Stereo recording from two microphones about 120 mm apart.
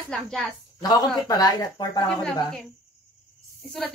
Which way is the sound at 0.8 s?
30° left (ahead or behind).